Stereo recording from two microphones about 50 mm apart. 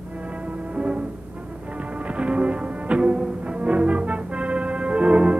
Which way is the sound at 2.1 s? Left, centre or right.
Right.